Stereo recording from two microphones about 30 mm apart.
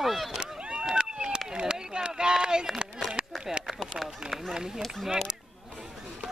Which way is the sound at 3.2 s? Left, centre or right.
Right.